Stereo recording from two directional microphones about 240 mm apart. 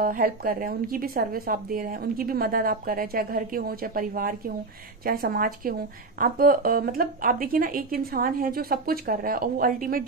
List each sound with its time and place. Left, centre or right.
0.0 s a woman's voice: right